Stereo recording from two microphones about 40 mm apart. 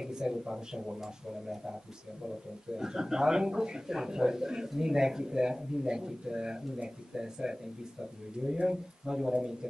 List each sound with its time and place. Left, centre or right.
0.0 s a man's voice: centre
2.8 s a man's voice: centre